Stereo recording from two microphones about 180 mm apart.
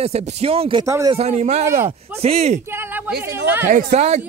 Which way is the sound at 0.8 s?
15° right (ahead or behind).